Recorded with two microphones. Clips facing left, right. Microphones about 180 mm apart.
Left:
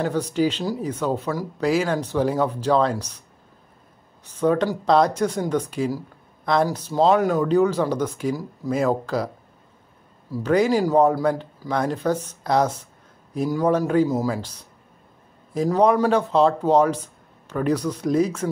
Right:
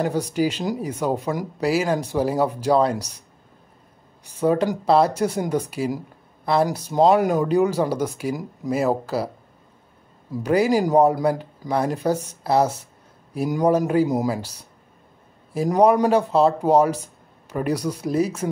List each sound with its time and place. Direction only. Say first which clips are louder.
0.0 s speech: even; 10° right (ahead or behind)
4.3 s speech: even; 10° right (ahead or behind)
10.3 s speech: even; 10° right (ahead or behind)